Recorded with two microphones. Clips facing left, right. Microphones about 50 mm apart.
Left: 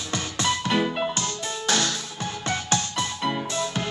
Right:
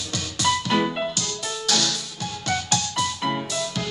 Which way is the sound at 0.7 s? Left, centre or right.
Centre.